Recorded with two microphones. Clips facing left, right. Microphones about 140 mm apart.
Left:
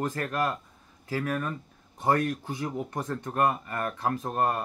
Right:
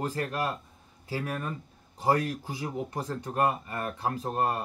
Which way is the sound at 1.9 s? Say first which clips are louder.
Left 1 dB; 10° right (ahead or behind).